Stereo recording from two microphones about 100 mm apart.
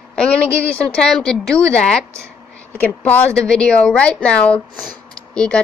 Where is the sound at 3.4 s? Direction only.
10° left (ahead or behind).